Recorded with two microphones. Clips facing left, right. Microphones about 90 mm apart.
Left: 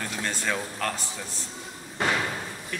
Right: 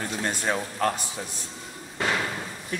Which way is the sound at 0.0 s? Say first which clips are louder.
Right 2 dB; 20° right (ahead or behind).